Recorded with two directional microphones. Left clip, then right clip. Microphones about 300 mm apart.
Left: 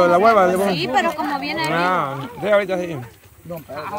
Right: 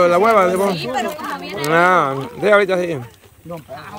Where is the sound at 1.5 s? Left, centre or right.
Centre.